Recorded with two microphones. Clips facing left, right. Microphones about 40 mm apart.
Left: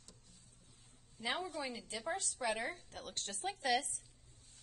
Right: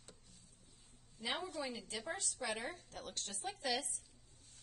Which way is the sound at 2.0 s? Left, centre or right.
Centre.